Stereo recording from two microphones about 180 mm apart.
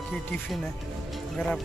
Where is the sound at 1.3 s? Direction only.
5° left (ahead or behind).